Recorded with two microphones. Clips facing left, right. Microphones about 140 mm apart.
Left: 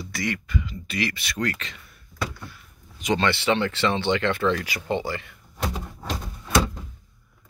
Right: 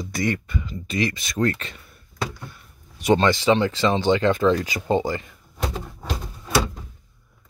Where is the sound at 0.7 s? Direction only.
30° right (ahead or behind).